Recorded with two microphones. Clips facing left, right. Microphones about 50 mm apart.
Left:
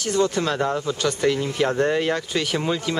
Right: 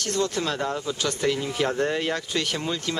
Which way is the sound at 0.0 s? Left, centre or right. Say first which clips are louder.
Left 4 dB; centre.